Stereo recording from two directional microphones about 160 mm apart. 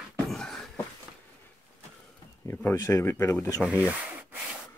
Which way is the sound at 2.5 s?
20° left (ahead or behind).